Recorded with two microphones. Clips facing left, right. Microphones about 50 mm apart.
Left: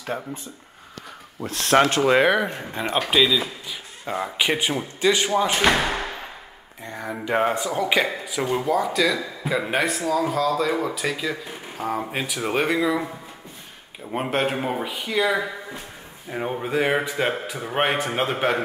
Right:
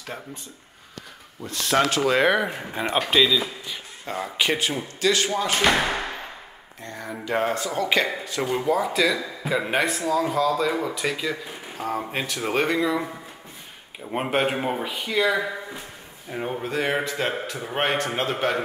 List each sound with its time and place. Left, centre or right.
0.0 s speech: left
1.7 s speech: left
2.2 s speech: centre
5.8 s thump: centre
6.8 s a man's voice: centre
14.1 s a man's voice: centre